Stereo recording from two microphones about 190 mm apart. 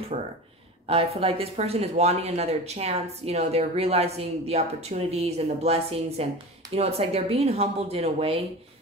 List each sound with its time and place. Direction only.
0.1 s speech: 35° right (ahead or behind)